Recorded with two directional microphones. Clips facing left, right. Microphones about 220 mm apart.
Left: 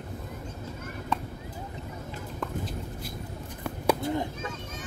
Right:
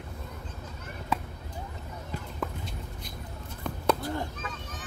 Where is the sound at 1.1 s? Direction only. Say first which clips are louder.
Even; 5° right (ahead or behind).